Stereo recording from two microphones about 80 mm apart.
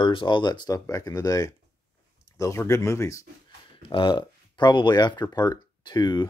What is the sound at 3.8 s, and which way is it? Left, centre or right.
Speech, left.